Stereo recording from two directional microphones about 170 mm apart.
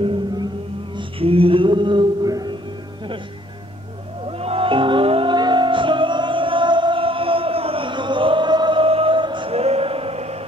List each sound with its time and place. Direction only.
0.0 s music: 30° right (ahead or behind)
1.2 s a sound: 35° right (ahead or behind)
4.4 s music: 35° right (ahead or behind)